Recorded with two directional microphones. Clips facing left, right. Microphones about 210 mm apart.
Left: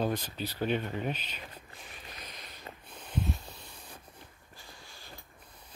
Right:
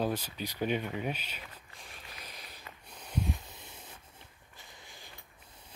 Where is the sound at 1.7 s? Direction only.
5° right (ahead or behind).